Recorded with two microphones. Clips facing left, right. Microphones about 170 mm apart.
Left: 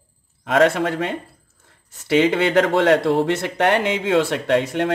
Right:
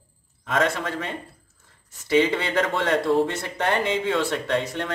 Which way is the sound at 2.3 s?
70° left (ahead or behind).